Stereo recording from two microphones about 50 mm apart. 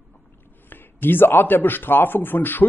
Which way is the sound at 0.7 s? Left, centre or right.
Left.